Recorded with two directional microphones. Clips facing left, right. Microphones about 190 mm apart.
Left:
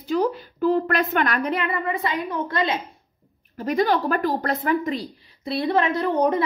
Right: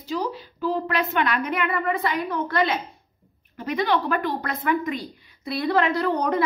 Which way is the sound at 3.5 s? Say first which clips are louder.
Left 3 dB; 45° left (ahead or behind).